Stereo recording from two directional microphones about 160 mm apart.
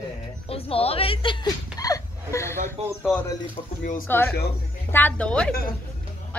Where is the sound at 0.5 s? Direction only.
35° left (ahead or behind); by 2.6 s 15° left (ahead or behind).